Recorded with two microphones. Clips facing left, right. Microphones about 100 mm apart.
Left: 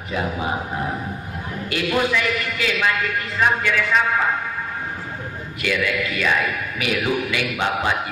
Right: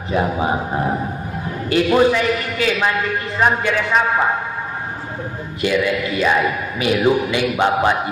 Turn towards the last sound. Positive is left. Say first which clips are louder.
# right 6 dB
turn(degrees=-25)  # may be behind; listen again after turning